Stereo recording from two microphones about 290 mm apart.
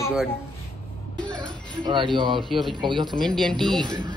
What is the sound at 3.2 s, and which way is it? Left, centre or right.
Speech, centre.